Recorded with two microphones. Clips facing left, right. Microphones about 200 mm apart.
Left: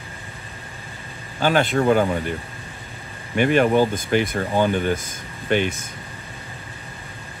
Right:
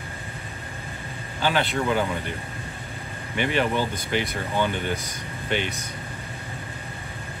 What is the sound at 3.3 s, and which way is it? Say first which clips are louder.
Speech: left 7 dB; 45° left (ahead or behind).